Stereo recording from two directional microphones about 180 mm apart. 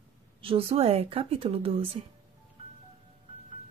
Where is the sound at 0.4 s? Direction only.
30° right (ahead or behind).